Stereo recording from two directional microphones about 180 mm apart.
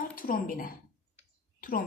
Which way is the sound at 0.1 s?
50° left (ahead or behind).